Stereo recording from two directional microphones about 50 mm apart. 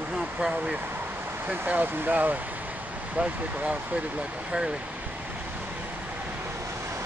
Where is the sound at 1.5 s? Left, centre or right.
Right.